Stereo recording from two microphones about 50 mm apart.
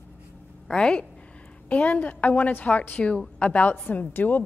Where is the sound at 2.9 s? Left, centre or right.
Left.